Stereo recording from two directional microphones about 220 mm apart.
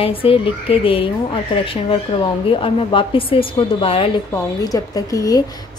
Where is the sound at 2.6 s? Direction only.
25° left (ahead or behind).